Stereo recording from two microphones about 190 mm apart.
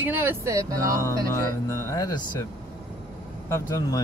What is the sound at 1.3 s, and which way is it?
Speech, 15° left (ahead or behind).